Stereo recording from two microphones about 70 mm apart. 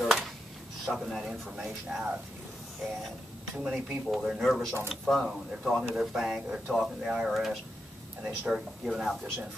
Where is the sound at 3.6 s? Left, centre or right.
Centre.